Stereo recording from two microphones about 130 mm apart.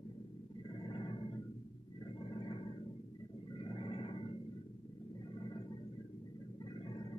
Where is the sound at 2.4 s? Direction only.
40° left (ahead or behind).